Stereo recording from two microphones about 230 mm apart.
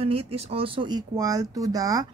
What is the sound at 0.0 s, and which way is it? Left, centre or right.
Speech, right.